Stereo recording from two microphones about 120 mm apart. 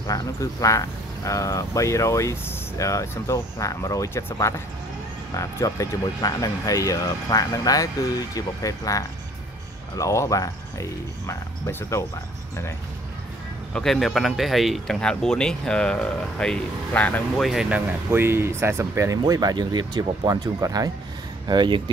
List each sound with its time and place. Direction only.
0.0 s speech: 30° left (ahead or behind)
13.7 s speech: centre (ahead or behind)
17.4 s speech: 5° right (ahead or behind); by 20.9 s 30° right (ahead or behind)
21.5 s speech: 40° right (ahead or behind)